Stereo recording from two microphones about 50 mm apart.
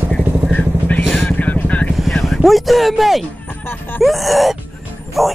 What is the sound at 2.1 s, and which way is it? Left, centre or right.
Vehicle, centre.